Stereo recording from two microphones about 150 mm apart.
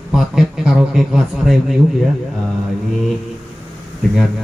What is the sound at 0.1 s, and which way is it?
Speech, centre (ahead or behind).